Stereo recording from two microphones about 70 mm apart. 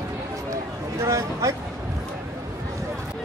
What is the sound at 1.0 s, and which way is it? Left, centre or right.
Speech, right.